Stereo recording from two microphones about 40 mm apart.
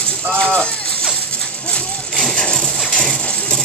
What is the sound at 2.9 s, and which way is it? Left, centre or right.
Music, left.